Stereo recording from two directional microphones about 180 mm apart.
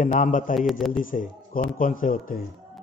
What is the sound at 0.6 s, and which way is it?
Speech, centre (ahead or behind).